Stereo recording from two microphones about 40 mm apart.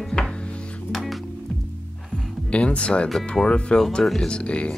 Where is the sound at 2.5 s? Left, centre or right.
Left.